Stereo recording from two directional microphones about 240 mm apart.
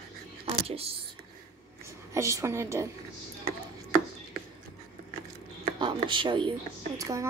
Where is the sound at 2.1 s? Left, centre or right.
Centre.